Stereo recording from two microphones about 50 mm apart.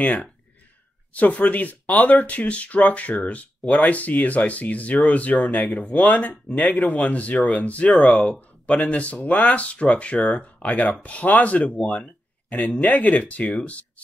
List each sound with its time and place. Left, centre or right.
0.0 s speech: left